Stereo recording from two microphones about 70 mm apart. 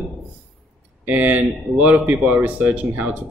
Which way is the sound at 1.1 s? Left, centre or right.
Right.